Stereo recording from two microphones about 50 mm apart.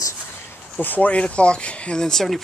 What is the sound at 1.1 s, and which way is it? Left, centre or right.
Speech, left.